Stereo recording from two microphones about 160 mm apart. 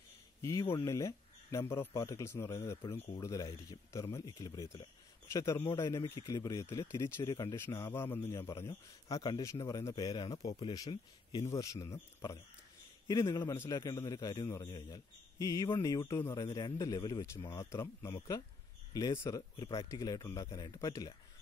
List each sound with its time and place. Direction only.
0.4 s a man's voice: 20° left (ahead or behind)